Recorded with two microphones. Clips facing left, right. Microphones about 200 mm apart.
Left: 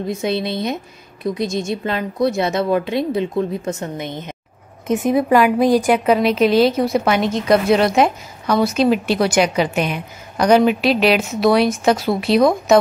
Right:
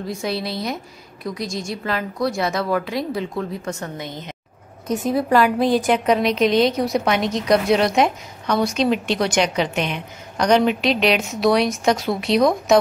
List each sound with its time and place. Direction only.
0.0 s a woman's voice: 20° left (ahead or behind); by 12.7 s centre (ahead or behind)